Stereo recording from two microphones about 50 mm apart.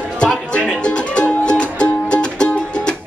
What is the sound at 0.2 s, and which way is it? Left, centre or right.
Music, left.